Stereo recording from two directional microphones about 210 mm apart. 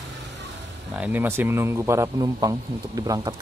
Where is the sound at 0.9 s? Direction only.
10° right (ahead or behind).